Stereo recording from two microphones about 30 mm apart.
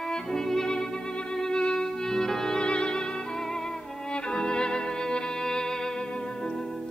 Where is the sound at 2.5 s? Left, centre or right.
Left.